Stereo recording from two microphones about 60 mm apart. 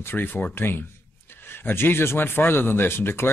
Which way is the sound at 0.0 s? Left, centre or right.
Left.